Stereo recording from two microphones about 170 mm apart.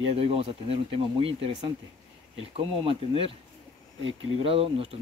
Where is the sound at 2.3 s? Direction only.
30° right (ahead or behind).